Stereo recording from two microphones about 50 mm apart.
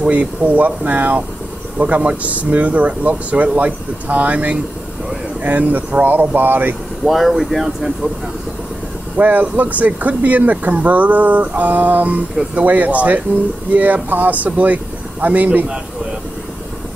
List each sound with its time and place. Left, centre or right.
0.0 s speech: right
7.1 s speech: centre
9.1 s speech: right